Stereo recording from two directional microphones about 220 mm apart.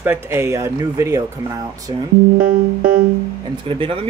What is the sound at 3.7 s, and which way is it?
Speech, 25° right (ahead or behind).